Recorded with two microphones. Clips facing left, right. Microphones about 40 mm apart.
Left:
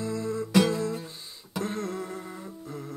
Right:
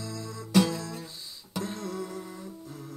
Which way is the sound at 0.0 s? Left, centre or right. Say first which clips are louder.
Left 8 dB; left.